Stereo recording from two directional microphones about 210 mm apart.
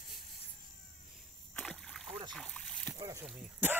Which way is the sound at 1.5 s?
Centre (ahead or behind).